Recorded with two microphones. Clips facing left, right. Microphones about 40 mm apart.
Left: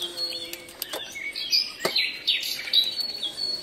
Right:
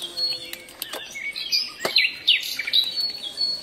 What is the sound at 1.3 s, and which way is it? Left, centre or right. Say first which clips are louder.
Chirp: even; right.